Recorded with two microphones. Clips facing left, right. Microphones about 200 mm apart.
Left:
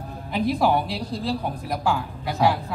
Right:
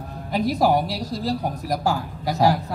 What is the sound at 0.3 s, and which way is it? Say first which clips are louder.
A woman's voice: right 2 dB; 40° right (ahead or behind).